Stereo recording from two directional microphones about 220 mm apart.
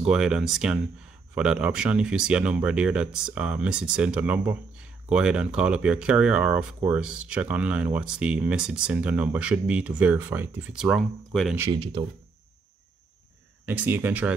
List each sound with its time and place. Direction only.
0.0 s speech: 5° right (ahead or behind)
11.6 s speech: 20° right (ahead or behind)
13.7 s speech: 10° right (ahead or behind)